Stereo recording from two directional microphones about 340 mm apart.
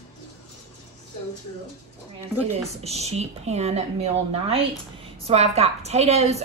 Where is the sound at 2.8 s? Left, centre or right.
Centre.